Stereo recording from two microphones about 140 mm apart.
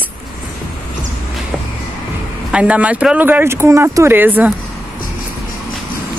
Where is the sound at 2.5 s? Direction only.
10° right (ahead or behind).